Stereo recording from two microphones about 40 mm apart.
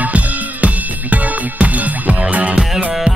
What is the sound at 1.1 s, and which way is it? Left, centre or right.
Music, right.